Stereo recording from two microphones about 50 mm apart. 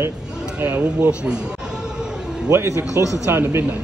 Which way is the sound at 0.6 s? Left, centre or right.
Right.